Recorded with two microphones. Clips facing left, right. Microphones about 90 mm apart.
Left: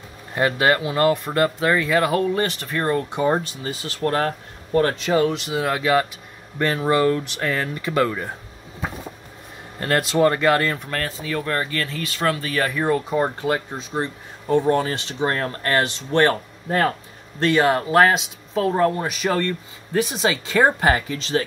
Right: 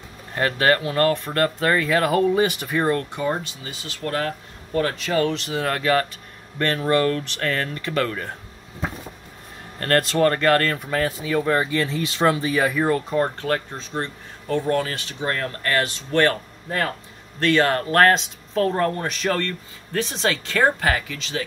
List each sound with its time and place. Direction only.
0.3 s speech: 15° left (ahead or behind); by 3.0 s 5° right (ahead or behind)
3.0 s speech: 20° left (ahead or behind)
3.3 s speech: 35° left (ahead or behind)
4.7 s speech: 25° left (ahead or behind)
5.3 s speech: 10° left (ahead or behind)
9.8 s speech: 5° left (ahead or behind)
10.8 s speech: 5° right (ahead or behind); by 14.6 s 10° left (ahead or behind)
14.6 s speech: 25° left (ahead or behind)
20.8 s speech: 30° left (ahead or behind)